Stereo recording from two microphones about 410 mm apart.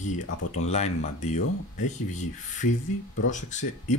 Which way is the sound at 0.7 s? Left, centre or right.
Centre.